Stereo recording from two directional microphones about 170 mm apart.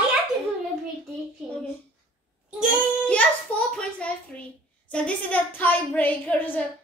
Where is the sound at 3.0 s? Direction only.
5° left (ahead or behind).